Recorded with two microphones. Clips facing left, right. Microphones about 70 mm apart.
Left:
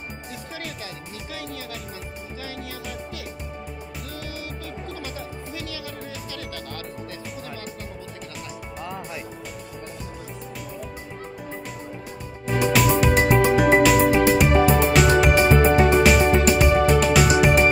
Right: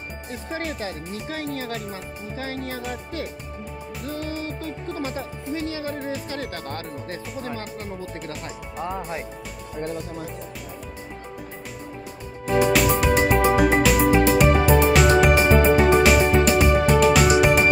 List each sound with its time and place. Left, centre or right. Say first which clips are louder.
0.3 s speech: right 7 dB; right
4.1 s speech: right 7 dB; right
12.4 s music: right 1 dB; centre